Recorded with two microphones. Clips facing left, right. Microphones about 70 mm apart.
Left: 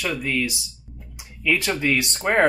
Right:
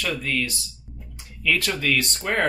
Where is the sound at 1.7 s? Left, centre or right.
Left.